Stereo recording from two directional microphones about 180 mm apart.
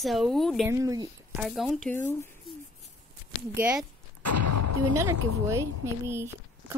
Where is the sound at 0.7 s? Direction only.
15° right (ahead or behind).